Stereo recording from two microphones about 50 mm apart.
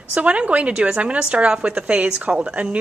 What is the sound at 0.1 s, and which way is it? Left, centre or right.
A woman's voice, right.